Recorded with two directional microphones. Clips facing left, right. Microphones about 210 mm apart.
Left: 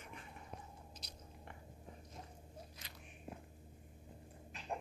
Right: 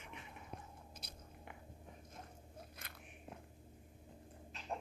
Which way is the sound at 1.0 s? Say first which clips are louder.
Right 1 dB; 55° right (ahead or behind).